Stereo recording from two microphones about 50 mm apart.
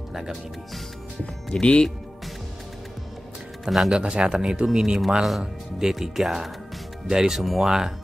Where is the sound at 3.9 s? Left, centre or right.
Centre.